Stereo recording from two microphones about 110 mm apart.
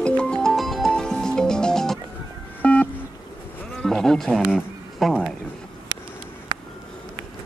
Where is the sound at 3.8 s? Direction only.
5° left (ahead or behind).